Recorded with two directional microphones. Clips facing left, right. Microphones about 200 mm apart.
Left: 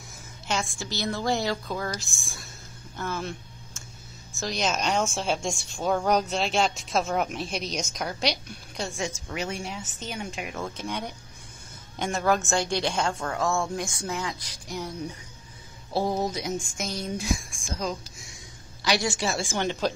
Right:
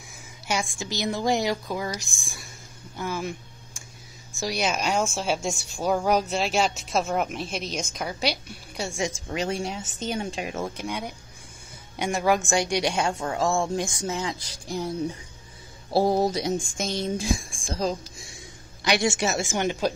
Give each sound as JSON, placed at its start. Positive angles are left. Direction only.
{"t": 0.5, "sound": "speech", "side_deg": -15}
{"t": 3.0, "sound": "a sound", "side_deg": -10}
{"t": 4.4, "sound": "a woman's voice", "side_deg": -10}
{"t": 9.3, "sound": "speech", "side_deg": -30}
{"t": 10.8, "sound": "speech", "side_deg": -10}
{"t": 15.9, "sound": "speech", "side_deg": -35}